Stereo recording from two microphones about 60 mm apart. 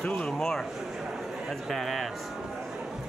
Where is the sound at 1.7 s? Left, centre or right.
Centre.